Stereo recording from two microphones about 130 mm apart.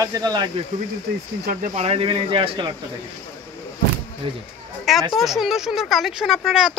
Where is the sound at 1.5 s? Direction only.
90° right.